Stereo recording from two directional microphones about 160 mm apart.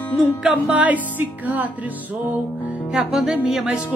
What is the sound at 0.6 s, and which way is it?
Speech, 10° right (ahead or behind).